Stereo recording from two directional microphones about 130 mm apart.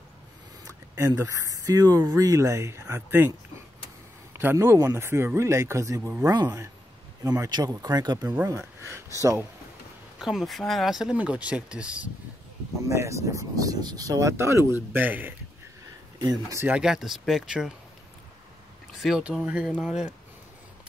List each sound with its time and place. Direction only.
0.9 s speech: 25° right (ahead or behind)
4.4 s speech: 15° right (ahead or behind)
10.1 s speech: centre (ahead or behind)
12.8 s speech: 20° right (ahead or behind)
16.2 s speech: 30° right (ahead or behind)
16.5 s speech: 15° right (ahead or behind)
16.8 s speech: 5° right (ahead or behind)
19.0 s speech: 5° right (ahead or behind)